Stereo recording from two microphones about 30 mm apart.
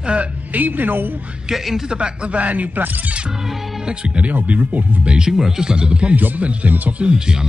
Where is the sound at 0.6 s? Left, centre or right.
Right.